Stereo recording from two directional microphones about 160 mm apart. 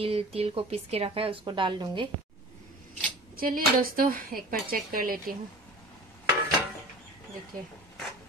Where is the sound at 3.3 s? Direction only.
65° right (ahead or behind).